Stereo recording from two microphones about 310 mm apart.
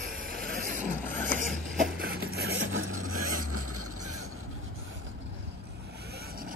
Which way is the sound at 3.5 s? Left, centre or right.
Right.